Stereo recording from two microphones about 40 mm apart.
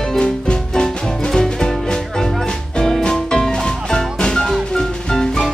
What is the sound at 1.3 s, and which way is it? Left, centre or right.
Music, centre.